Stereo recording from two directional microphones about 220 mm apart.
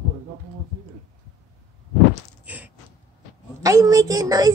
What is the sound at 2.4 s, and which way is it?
Gasp, 5° right (ahead or behind).